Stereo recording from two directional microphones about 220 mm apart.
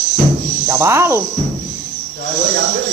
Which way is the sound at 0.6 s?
10° right (ahead or behind).